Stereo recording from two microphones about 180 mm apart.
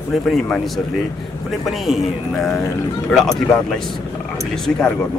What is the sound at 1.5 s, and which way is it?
Speech, centre (ahead or behind).